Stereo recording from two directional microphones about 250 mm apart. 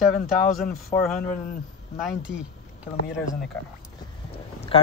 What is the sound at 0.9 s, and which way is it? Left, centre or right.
Speech, centre.